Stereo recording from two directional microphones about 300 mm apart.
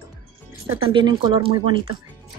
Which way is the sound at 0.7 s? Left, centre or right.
Centre.